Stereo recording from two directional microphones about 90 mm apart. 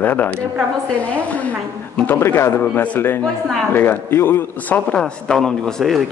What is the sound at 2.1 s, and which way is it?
Speech, 30° left (ahead or behind).